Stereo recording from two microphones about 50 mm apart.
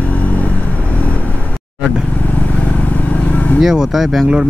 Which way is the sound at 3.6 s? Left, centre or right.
Centre.